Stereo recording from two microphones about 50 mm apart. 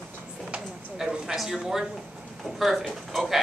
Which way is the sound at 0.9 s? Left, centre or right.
Centre.